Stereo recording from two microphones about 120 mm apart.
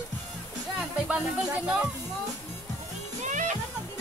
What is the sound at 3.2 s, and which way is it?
Music, 90° right.